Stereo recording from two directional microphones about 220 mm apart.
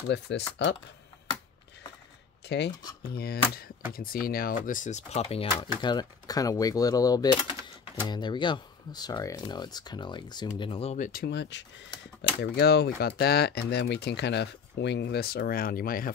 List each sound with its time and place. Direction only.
0.3 s speech: 50° left (ahead or behind)
2.4 s speech: 50° left (ahead or behind)